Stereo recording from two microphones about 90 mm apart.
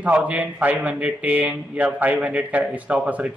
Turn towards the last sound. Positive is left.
turn(degrees=-15)  # may be behind; listen again after turning